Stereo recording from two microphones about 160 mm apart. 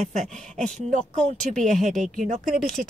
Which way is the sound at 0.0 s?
45° right (ahead or behind).